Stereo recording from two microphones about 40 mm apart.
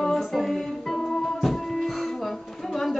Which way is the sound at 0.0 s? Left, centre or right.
Centre.